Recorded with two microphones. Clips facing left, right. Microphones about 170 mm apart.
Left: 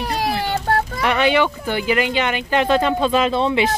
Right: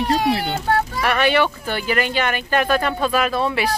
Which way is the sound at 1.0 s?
20° left (ahead or behind).